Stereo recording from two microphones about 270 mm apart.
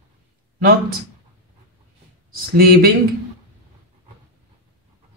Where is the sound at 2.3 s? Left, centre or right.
Right.